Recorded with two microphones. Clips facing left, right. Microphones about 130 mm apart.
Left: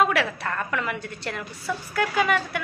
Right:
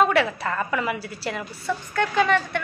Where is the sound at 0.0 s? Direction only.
Centre (ahead or behind).